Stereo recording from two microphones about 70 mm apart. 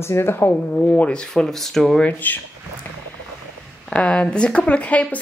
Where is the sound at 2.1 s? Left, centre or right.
Left.